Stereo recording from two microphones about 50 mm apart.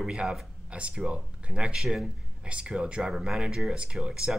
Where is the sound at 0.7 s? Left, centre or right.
Centre.